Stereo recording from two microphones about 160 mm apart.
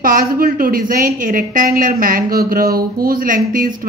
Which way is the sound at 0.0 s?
60° right (ahead or behind).